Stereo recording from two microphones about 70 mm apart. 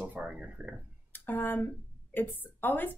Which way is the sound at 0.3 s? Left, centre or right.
Centre.